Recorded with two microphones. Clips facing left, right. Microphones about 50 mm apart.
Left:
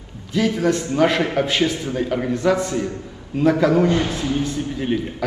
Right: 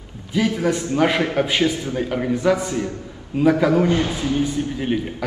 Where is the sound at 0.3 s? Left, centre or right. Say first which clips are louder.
Left 1 dB; centre.